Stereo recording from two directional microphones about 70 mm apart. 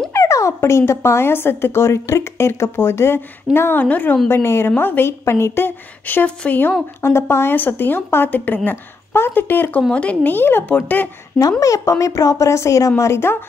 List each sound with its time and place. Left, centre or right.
0.1 s speech: left
3.8 s a woman's voice: left
4.3 s a woman's voice: left
7.0 s speech: left
7.5 s a woman's voice: left
11.6 s speech: left